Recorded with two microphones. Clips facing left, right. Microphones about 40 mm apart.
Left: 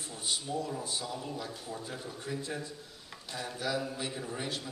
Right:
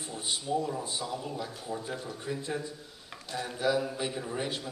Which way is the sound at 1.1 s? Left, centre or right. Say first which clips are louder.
Right 3 dB; centre.